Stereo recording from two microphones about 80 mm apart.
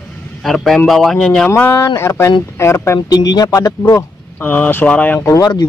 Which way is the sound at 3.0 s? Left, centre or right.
Left.